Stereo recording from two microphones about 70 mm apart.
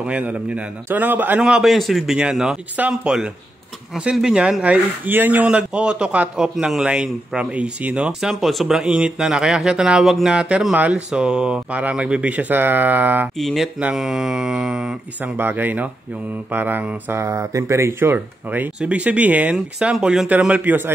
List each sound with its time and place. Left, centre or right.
0.0 s speech: centre
1.4 s a man's voice: centre
4.7 s speech: right
13.4 s a man's voice: centre
15.3 s speech: right; by 20.2 s centre
20.2 s speech: right